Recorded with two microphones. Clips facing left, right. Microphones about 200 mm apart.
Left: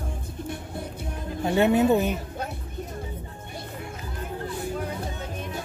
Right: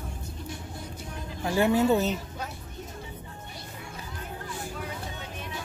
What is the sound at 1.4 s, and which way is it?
Speech, 20° left (ahead or behind).